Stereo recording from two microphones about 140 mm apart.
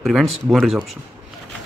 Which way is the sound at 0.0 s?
Centre (ahead or behind).